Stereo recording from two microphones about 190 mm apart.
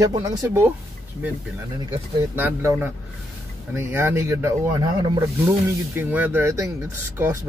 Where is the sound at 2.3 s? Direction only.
10° right (ahead or behind).